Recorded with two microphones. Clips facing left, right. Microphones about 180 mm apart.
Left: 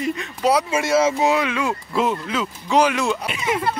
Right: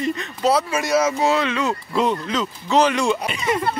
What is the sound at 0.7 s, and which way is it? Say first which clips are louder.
Speech: left 1 dB; 25° left (ahead or behind).